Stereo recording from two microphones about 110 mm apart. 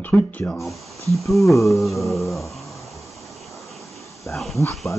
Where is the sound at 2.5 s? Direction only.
Centre (ahead or behind).